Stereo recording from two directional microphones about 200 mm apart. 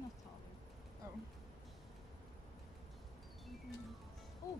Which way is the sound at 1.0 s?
15° right (ahead or behind).